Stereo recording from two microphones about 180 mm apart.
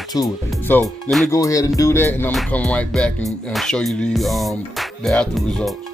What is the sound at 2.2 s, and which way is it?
Music, 5° left (ahead or behind).